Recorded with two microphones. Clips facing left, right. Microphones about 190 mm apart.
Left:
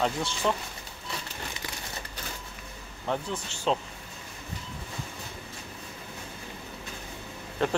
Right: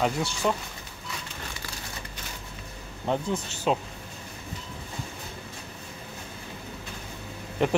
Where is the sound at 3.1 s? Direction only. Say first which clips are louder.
Right 4 dB; 15° right (ahead or behind).